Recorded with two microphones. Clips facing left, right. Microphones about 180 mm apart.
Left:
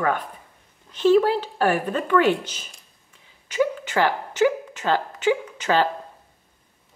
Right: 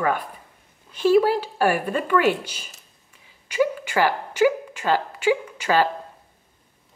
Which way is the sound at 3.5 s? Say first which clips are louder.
Right 1 dB; 10° right (ahead or behind).